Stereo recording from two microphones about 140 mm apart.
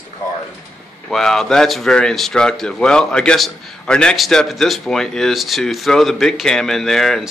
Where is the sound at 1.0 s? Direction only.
5° left (ahead or behind).